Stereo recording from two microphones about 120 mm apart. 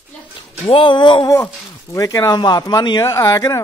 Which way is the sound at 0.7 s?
45° left (ahead or behind).